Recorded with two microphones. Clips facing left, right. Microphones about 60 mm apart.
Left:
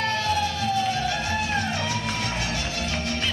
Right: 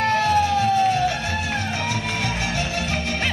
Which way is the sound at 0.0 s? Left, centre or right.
Right.